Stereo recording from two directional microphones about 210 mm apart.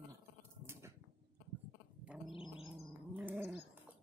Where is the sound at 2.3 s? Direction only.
25° left (ahead or behind).